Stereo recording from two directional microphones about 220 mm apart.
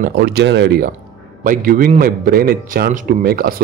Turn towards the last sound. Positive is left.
turn(degrees=-40)  # may be behind; listen again after turning